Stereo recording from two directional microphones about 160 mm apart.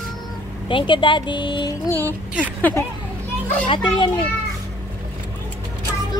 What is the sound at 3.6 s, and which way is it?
Speech, 30° left (ahead or behind).